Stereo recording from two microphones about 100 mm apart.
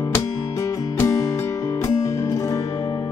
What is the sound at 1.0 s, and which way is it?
Music, 30° left (ahead or behind).